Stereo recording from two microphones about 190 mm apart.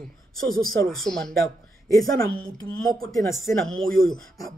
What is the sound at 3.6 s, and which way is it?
Speech, centre (ahead or behind).